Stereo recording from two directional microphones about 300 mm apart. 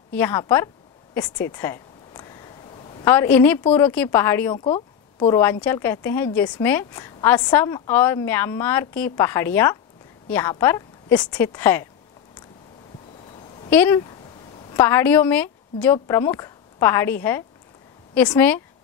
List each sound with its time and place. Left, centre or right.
0.1 s a woman's voice: centre
1.1 s a sound: centre
3.0 s a woman's voice: centre
4.6 s a sound: centre
5.4 s a woman's voice: centre
13.7 s a woman's voice: centre